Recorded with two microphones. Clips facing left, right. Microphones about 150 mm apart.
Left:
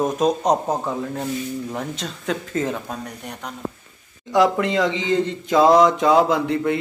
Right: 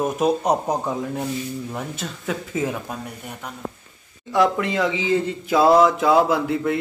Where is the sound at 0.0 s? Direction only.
10° right (ahead or behind).